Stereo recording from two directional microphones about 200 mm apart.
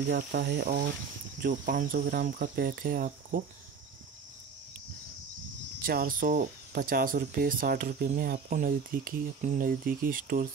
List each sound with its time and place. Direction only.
0.1 s speech: 50° right (ahead or behind)
5.8 s speech: 45° right (ahead or behind)